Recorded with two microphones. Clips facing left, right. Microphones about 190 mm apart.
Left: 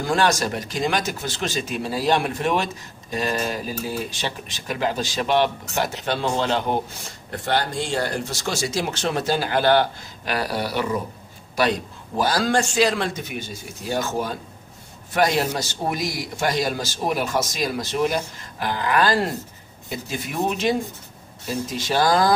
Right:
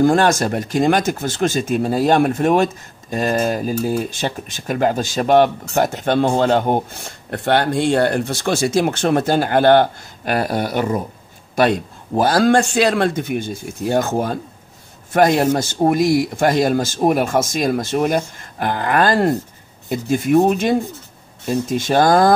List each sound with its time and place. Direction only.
0.0 s speech: 50° right (ahead or behind)
12.2 s speech: 55° right (ahead or behind)